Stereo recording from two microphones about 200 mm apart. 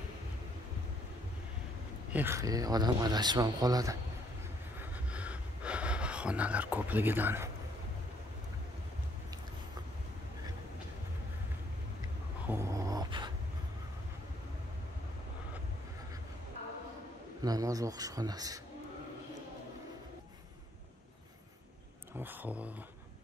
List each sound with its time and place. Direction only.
2.1 s speech: 15° right (ahead or behind)
4.7 s a sound: 5° right (ahead or behind)
12.4 s dog: 15° right (ahead or behind)
17.4 s speech: 20° right (ahead or behind)
22.1 s speech: 10° right (ahead or behind)